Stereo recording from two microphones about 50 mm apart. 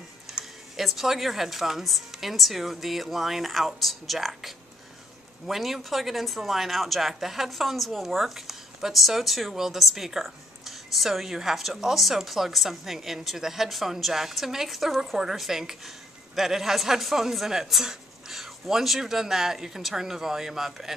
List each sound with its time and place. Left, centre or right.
0.3 s a woman's voice: centre